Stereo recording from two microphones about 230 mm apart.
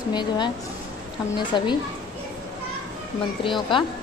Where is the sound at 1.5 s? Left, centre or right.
Centre.